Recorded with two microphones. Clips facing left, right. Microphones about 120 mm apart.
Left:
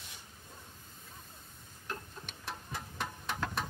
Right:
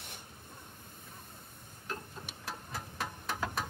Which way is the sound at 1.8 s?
Centre (ahead or behind).